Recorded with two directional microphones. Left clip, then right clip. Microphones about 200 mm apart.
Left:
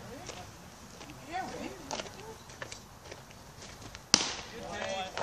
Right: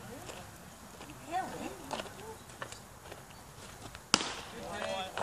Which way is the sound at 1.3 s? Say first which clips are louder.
Right 1 dB; 20° left (ahead or behind).